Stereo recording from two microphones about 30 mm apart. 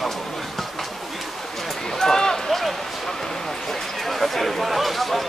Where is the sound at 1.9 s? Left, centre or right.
Centre.